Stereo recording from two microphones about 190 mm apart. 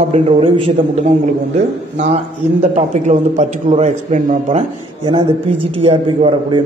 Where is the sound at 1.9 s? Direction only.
40° right (ahead or behind).